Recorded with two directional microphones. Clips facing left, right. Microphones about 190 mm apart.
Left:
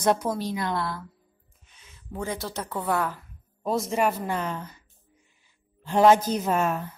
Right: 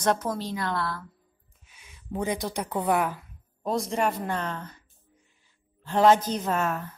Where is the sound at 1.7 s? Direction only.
15° right (ahead or behind).